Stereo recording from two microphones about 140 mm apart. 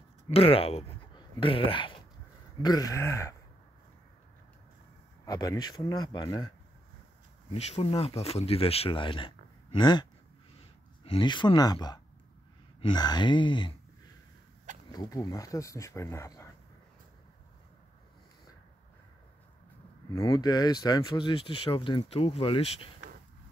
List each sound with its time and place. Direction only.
0.3 s speech: 45° left (ahead or behind)
2.6 s speech: 30° left (ahead or behind)
5.2 s speech: 25° left (ahead or behind)
7.5 s speech: 50° left (ahead or behind); by 10.0 s 35° left (ahead or behind)
11.1 s speech: 35° left (ahead or behind)
14.9 s speech: 25° left (ahead or behind)
20.1 s speech: 30° left (ahead or behind)